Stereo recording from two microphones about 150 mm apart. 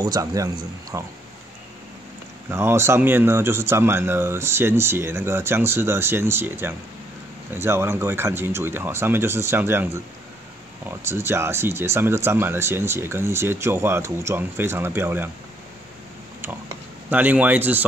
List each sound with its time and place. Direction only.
0.0 s speech: 25° right (ahead or behind)
2.5 s speech: 15° right (ahead or behind)
17.1 s speech: 10° right (ahead or behind)